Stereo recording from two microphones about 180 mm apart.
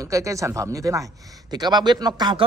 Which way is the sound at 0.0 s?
15° right (ahead or behind).